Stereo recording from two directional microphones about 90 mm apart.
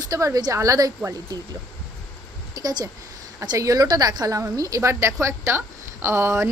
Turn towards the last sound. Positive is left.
turn(degrees=-30)  # may be behind; listen again after turning